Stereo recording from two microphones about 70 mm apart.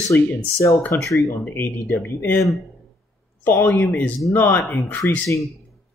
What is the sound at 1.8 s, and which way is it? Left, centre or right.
Speech, left.